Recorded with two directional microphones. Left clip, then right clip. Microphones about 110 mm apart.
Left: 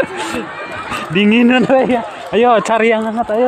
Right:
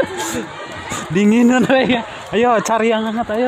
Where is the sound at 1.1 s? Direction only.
30° left (ahead or behind).